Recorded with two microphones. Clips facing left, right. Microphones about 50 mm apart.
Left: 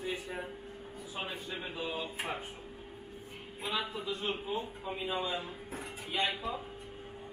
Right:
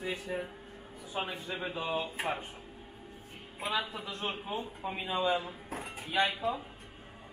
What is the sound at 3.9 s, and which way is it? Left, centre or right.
A man's voice, right.